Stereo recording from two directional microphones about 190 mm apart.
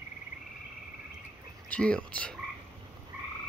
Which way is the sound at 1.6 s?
5° left (ahead or behind).